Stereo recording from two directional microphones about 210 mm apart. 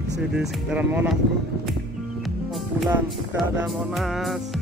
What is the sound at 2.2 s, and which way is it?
Music, centre (ahead or behind).